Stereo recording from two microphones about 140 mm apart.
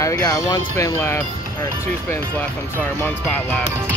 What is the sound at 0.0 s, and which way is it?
Speech, 25° left (ahead or behind).